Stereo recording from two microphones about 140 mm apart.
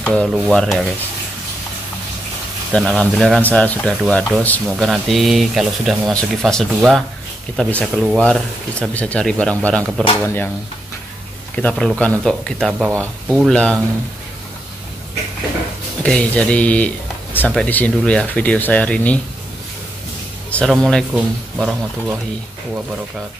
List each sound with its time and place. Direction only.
0.3 s speech: 5° left (ahead or behind)
2.7 s speech: 5° left (ahead or behind)
11.5 s speech: 5° left (ahead or behind)
16.0 s speech: 10° left (ahead or behind)
20.5 s speech: 5° left (ahead or behind)